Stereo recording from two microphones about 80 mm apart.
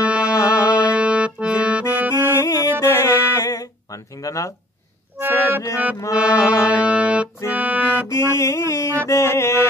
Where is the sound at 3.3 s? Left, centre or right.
Left.